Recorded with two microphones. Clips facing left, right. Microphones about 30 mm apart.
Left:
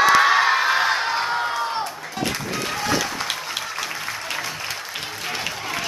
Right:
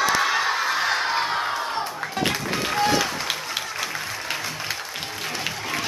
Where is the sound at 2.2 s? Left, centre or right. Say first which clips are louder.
Right 1 dB; centre.